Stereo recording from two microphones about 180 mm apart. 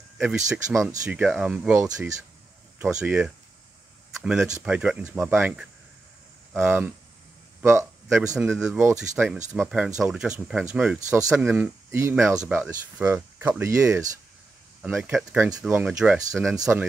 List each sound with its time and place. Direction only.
0.2 s speech: 10° right (ahead or behind)
2.8 s speech: 5° right (ahead or behind)
8.4 s speech: 5° right (ahead or behind)